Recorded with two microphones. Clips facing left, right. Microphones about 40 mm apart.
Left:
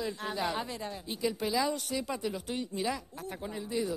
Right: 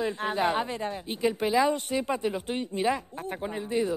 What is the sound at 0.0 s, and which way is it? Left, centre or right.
A woman's voice, right.